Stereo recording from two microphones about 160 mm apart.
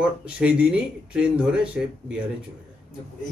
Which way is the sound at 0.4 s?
5° right (ahead or behind).